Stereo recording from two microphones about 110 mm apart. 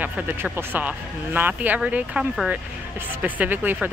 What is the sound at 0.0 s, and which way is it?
Speech, 15° right (ahead or behind).